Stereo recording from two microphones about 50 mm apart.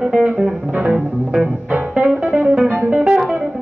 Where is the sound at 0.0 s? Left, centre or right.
Centre.